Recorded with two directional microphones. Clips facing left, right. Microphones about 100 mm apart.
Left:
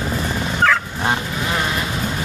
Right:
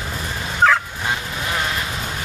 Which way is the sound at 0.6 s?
10° right (ahead or behind).